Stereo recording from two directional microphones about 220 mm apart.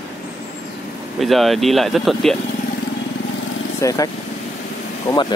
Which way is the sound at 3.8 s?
15° left (ahead or behind).